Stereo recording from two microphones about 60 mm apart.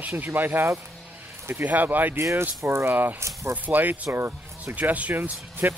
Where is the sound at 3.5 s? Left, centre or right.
Right.